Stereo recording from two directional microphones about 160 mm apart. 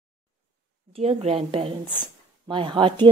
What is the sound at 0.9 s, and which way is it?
A woman's voice, 40° right (ahead or behind).